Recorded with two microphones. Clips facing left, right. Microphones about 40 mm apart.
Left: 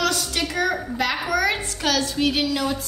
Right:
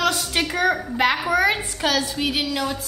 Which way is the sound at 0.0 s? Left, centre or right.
Right.